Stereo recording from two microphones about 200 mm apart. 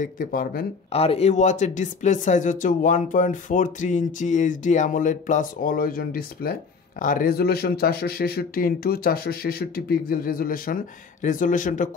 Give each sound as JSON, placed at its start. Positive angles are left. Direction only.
{"t": 0.0, "sound": "speech", "side_deg": 45}
{"t": 0.9, "sound": "speech", "side_deg": 30}